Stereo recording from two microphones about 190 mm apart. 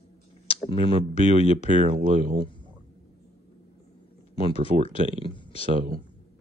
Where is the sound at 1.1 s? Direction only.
35° left (ahead or behind).